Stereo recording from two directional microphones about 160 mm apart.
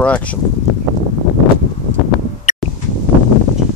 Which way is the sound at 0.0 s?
10° left (ahead or behind).